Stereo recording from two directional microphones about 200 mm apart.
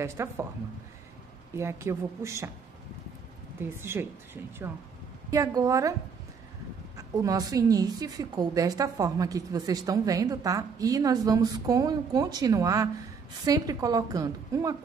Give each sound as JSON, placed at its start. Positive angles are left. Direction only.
{"t": 0.0, "sound": "a woman's voice", "side_deg": -15}
{"t": 1.6, "sound": "a woman's voice", "side_deg": -15}
{"t": 3.6, "sound": "a woman's voice", "side_deg": -10}
{"t": 5.3, "sound": "a woman's voice", "side_deg": -15}
{"t": 7.0, "sound": "a woman's voice", "side_deg": -15}